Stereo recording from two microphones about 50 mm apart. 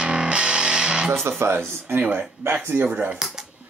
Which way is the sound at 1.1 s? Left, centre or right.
Right.